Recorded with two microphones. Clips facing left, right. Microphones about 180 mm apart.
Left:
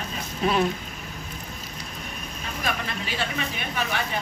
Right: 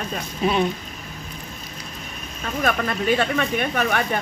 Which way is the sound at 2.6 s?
55° right (ahead or behind).